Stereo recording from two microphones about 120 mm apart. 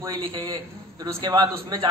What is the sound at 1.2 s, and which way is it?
Speech, 35° right (ahead or behind).